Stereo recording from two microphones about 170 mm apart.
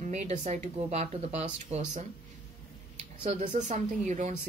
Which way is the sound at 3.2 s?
40° right (ahead or behind).